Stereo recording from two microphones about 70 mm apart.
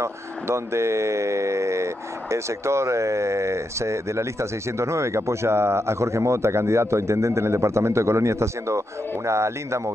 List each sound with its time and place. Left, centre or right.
0.0 s speech: right